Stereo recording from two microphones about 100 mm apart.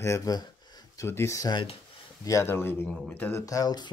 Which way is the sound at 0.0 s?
30° left (ahead or behind).